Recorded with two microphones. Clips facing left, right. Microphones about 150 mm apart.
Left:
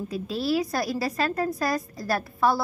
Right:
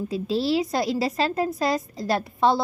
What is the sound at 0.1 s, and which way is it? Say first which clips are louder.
A woman's voice: right 3 dB; 25° right (ahead or behind).